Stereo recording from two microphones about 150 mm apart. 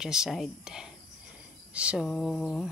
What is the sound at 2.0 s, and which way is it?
Speech, 5° left (ahead or behind).